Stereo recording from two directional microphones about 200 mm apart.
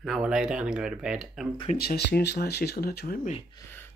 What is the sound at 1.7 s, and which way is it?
Speech, 50° left (ahead or behind).